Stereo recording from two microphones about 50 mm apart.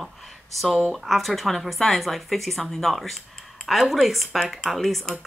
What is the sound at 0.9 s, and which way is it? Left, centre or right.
Speech, centre.